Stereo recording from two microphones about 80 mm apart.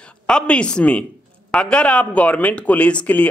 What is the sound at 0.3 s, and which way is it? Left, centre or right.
Speech, centre.